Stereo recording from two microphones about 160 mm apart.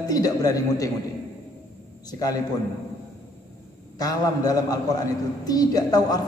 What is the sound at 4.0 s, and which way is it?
A man's voice, 25° left (ahead or behind).